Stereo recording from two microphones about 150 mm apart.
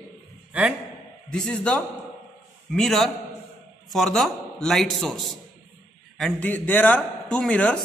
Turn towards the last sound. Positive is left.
turn(degrees=5)  # may be behind; listen again after turning